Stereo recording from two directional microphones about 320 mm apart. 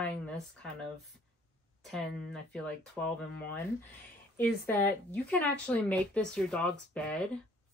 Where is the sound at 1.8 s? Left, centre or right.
Centre.